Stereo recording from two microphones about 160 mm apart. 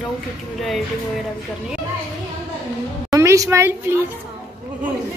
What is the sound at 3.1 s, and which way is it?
Speech, 20° right (ahead or behind).